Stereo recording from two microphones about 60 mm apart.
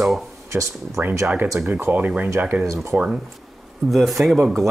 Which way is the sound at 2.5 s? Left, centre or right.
Right.